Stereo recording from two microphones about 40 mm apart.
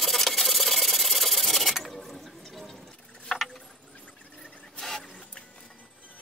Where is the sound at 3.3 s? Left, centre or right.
Centre.